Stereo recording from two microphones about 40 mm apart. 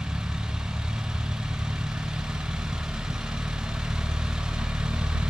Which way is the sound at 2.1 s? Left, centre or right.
Centre.